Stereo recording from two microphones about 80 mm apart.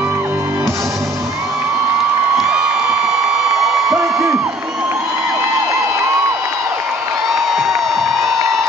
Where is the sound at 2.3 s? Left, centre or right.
Centre.